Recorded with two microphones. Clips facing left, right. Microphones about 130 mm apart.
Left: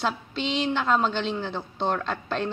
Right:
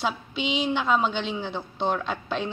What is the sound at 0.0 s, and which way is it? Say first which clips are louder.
A woman's voice: even; 5° right (ahead or behind).